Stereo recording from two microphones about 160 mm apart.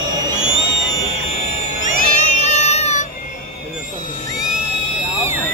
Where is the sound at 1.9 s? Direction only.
45° left (ahead or behind).